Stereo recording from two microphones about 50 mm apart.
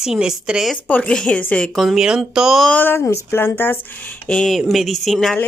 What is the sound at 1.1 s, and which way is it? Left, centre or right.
Speech, centre.